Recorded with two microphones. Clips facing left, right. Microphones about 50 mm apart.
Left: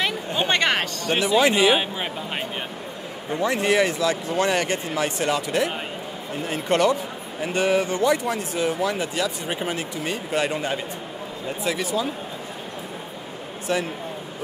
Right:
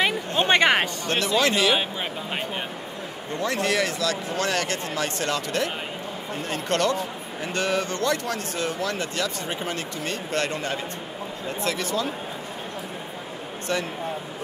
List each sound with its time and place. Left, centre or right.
0.5 s a sound: centre
1.0 s speech: centre
3.3 s speech: centre
13.7 s speech: centre